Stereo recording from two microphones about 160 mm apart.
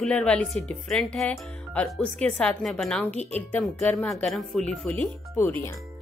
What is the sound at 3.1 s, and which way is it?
Speech, 45° left (ahead or behind).